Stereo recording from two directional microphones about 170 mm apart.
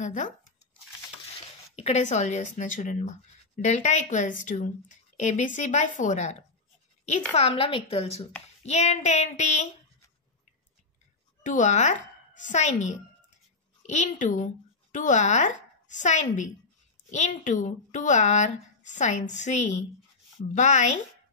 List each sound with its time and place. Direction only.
0.0 s speech: 45° left (ahead or behind)
1.8 s a woman's voice: 40° left (ahead or behind)
7.3 s a woman's voice: 35° left (ahead or behind)
11.4 s a woman's voice: 50° left (ahead or behind)